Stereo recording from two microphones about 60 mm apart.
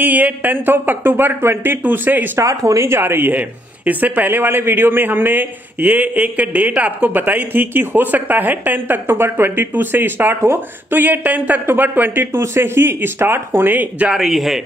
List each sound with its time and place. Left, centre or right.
0.0 s speech: right
2.3 s speech: right
2.9 s speech: right
12.4 s speech: right
14.0 s a man's voice: centre